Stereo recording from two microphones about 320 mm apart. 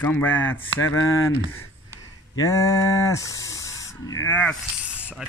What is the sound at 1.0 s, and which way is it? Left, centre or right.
Speech, left.